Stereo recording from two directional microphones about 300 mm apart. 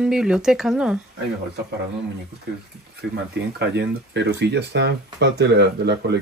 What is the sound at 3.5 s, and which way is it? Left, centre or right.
Speech, right.